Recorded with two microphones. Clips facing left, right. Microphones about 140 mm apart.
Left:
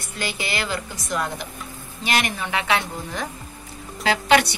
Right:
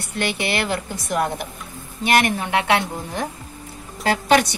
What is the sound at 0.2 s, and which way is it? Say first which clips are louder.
A woman's voice: right 5 dB; 65° right (ahead or behind).